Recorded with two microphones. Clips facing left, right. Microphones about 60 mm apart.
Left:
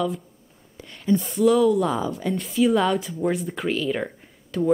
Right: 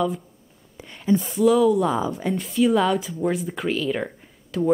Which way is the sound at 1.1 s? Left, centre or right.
Centre.